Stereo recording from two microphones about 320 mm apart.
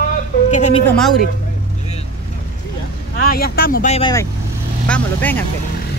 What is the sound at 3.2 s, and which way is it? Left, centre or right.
Speech, left.